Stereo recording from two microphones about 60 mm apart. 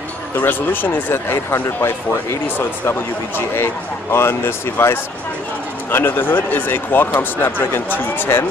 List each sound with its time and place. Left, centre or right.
0.4 s speech: left